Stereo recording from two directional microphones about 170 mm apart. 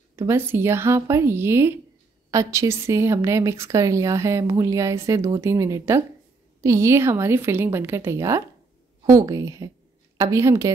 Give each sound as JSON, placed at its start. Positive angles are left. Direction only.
{"t": 0.1, "sound": "a woman's voice", "side_deg": -15}